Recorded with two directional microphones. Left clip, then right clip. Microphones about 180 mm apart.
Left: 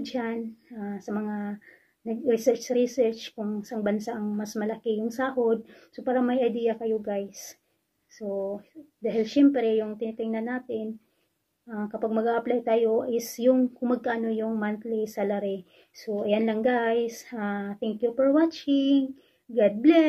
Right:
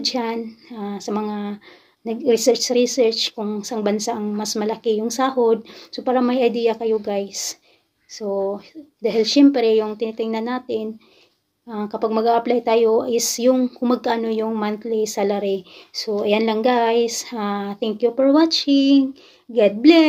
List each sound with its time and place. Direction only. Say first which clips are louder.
0.0 s speech: right 8 dB; 5° right (ahead or behind)
9.0 s speech: right 7 dB; centre (ahead or behind)
19.5 s speech: right 7 dB; 5° right (ahead or behind)